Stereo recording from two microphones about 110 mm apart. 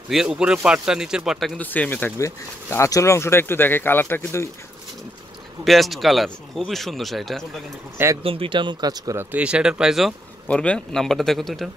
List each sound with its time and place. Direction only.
0.1 s speech: 5° right (ahead or behind)
1.6 s speech: 15° left (ahead or behind)
2.1 s speech: 25° left (ahead or behind)
5.6 s speech: centre (ahead or behind)
8.2 s speech: 55° right (ahead or behind); by 9.1 s 35° right (ahead or behind)
9.1 s speech: 20° right (ahead or behind); by 10.1 s 5° right (ahead or behind)
10.5 s speech: 10° left (ahead or behind)